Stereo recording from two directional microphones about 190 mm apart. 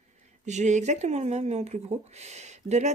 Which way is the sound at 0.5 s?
40° right (ahead or behind).